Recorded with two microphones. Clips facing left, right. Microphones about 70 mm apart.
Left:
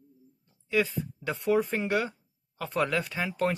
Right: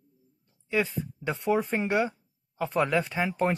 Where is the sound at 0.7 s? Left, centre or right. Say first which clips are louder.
Even; right.